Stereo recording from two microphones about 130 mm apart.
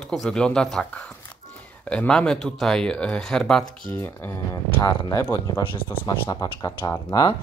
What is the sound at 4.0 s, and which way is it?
Speech, 15° left (ahead or behind).